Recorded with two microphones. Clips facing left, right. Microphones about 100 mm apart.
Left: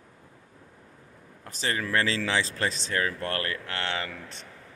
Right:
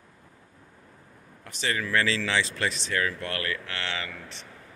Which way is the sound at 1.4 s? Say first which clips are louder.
Even; 30° left (ahead or behind).